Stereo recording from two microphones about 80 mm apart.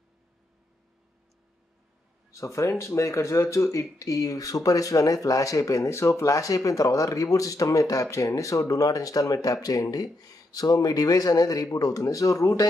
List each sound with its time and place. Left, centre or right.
2.3 s speech: left